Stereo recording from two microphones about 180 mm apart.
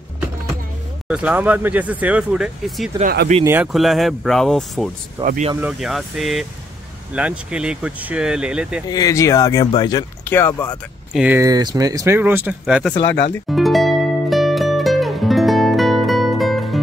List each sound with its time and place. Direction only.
1.0 s speech: 5° right (ahead or behind)
3.0 s speech: 55° right (ahead or behind)
3.4 s speech: 10° right (ahead or behind)
3.7 s speech: centre (ahead or behind)
5.2 s speech: 45° right (ahead or behind)
5.6 s speech: 5° right (ahead or behind)
8.8 s speech: 20° left (ahead or behind)
11.1 s speech: 10° right (ahead or behind)
11.4 s speech: 20° right (ahead or behind); by 12.9 s 5° right (ahead or behind)
12.9 s music: 10° left (ahead or behind)